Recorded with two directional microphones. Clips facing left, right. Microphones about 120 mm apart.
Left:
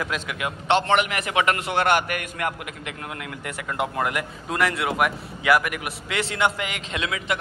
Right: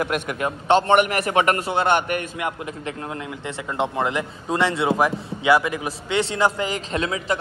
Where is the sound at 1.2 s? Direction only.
40° right (ahead or behind).